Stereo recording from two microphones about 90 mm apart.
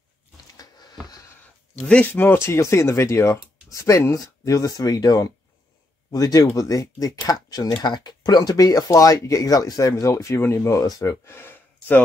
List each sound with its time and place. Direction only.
1.8 s speech: 15° left (ahead or behind)